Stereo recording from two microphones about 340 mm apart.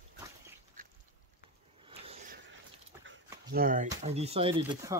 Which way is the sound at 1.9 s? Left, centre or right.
Centre.